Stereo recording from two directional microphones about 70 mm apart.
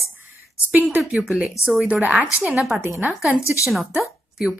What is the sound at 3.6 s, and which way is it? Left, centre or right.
Speech, centre.